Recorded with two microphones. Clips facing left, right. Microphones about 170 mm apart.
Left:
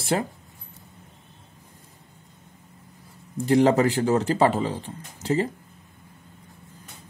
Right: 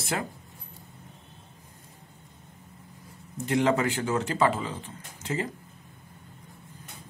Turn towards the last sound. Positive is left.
turn(degrees=35)  # may be behind; listen again after turning